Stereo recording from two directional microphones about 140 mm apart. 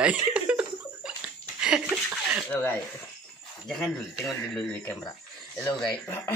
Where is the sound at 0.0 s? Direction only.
10° right (ahead or behind).